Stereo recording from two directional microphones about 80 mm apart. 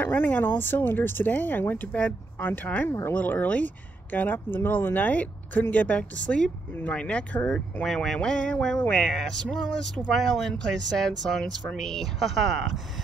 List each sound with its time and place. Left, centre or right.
0.0 s speech: left
7.8 s a sound: centre
9.1 s speech: centre